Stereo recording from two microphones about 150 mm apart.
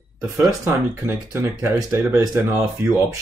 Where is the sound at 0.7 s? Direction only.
15° right (ahead or behind).